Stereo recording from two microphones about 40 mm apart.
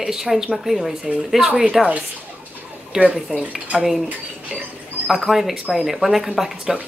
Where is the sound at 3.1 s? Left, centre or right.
Centre.